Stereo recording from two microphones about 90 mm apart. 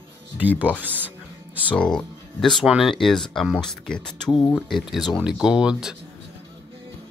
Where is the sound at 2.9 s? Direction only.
5° left (ahead or behind).